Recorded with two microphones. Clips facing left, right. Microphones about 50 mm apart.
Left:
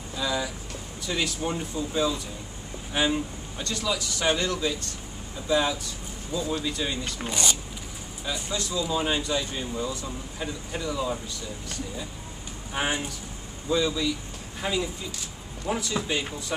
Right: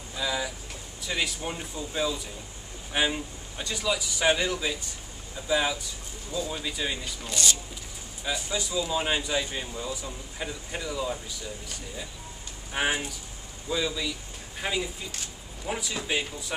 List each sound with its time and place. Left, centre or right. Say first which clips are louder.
0.1 s vehicle: left 2 dB; centre
1.0 s a man's voice: left 2 dB; centre
7.2 s speech: left 1 dB; left
8.3 s a man's voice: even; centre
12.7 s a man's voice: even; centre